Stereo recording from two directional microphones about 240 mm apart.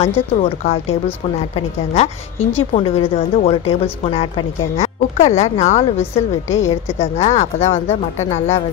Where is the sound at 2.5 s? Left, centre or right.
Left.